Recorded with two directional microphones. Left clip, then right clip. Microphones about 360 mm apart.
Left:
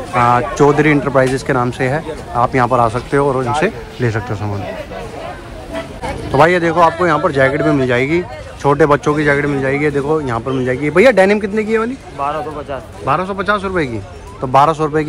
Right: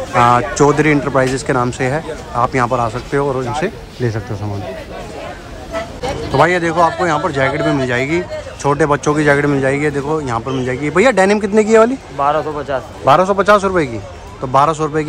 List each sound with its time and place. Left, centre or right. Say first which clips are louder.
0.1 s speech: right 1 dB; centre
6.3 s speech: left 2 dB; centre
12.2 s a man's voice: right 4 dB; right
13.0 s a man's voice: right 6 dB; centre